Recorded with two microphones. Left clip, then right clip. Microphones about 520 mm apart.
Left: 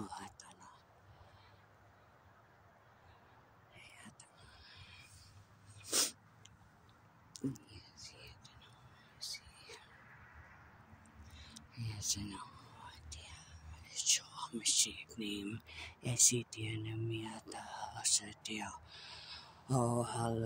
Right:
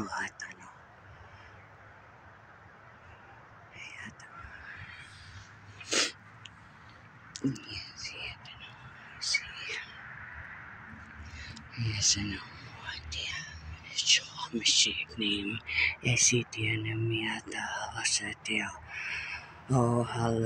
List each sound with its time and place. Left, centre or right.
0.0 s whispering: left
5.8 s sneeze: left
7.3 s whispering: left
11.3 s speech: left
19.7 s mantra: left